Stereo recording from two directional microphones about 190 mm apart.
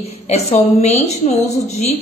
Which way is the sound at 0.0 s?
35° left (ahead or behind).